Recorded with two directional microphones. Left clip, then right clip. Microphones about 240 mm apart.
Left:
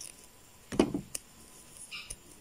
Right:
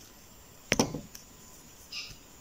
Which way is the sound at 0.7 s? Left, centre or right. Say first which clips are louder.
Right 1 dB; centre.